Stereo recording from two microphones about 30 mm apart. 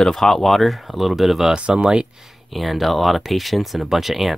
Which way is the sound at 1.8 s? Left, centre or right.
Right.